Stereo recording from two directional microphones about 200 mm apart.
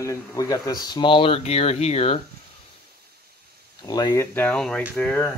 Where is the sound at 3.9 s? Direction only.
20° left (ahead or behind).